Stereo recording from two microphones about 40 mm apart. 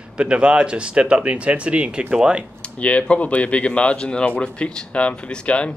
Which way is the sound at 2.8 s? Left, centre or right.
Left.